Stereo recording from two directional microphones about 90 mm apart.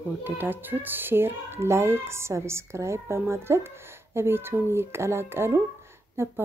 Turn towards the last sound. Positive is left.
turn(degrees=-25)  # may be behind; listen again after turning